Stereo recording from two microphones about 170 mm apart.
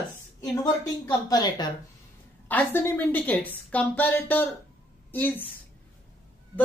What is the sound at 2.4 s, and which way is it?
Speech, 10° left (ahead or behind).